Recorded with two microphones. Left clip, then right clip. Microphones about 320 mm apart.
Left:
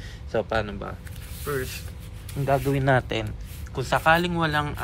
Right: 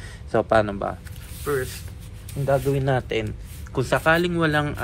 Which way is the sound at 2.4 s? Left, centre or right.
Left.